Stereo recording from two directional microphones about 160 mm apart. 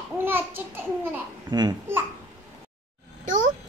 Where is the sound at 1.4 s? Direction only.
25° right (ahead or behind).